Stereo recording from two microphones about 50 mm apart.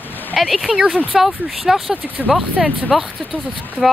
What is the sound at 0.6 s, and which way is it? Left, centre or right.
Speech, centre.